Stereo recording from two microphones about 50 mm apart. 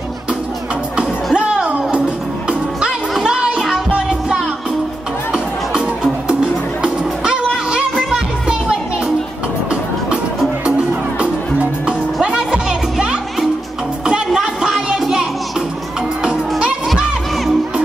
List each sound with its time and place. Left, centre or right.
0.9 s music: centre
11.8 s music: centre
14.0 s music: centre